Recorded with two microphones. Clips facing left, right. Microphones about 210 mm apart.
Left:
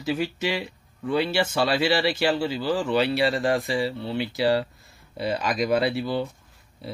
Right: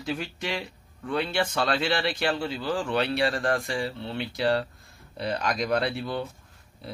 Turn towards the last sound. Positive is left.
turn(degrees=5)  # may be behind; listen again after turning